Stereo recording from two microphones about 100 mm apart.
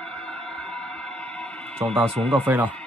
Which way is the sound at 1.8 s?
20° right (ahead or behind).